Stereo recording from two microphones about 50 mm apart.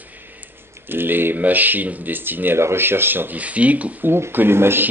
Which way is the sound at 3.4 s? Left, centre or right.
Right.